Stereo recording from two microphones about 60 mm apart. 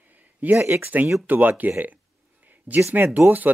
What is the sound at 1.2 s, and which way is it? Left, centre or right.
Speech, right.